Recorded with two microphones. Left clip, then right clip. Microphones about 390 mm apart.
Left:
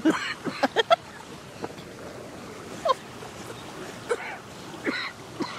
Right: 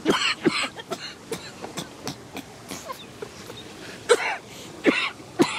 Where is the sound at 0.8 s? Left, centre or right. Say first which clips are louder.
Left 15 dB; left.